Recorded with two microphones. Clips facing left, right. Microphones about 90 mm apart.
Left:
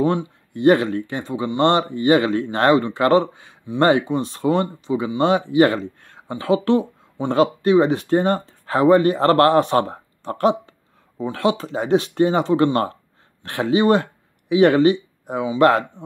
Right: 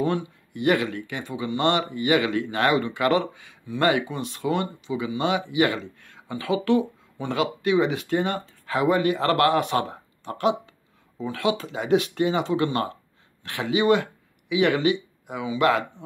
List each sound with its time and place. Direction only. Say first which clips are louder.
0.0 s speech: left 5 dB; 25° left (ahead or behind)